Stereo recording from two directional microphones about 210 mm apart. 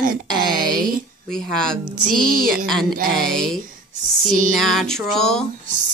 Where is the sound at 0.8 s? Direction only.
40° right (ahead or behind).